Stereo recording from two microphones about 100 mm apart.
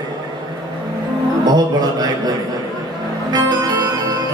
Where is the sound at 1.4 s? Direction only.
40° right (ahead or behind).